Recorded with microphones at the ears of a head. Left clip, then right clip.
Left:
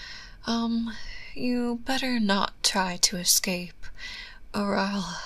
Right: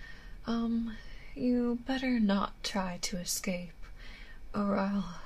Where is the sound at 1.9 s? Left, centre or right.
Left.